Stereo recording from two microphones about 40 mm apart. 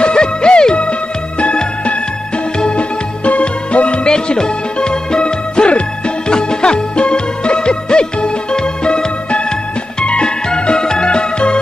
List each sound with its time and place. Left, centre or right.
0.0 s music: left
3.3 s music: left